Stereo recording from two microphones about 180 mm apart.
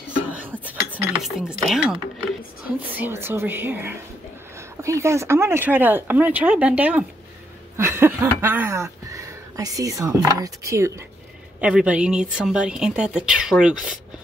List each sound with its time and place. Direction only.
0.3 s cutlery: 10° right (ahead or behind)
2.9 s speech: 10° right (ahead or behind)
7.7 s a sound: 15° right (ahead or behind)
8.4 s speech: 10° right (ahead or behind)